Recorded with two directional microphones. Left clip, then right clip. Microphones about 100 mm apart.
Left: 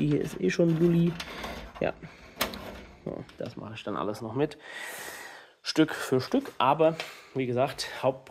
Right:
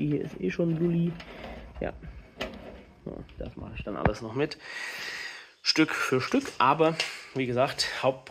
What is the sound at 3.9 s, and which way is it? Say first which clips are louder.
Speech: right 3 dB; 90° left.